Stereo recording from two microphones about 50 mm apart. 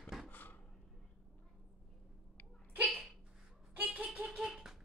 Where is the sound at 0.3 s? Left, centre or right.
Left.